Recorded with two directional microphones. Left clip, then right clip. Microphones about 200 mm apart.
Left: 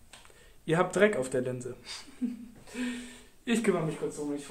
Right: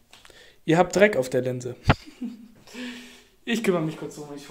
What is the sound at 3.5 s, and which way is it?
Speech, 20° right (ahead or behind).